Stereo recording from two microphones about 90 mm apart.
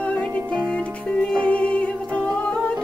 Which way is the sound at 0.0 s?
15° left (ahead or behind).